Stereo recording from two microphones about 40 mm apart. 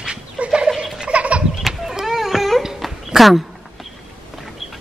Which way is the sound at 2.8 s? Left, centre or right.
Centre.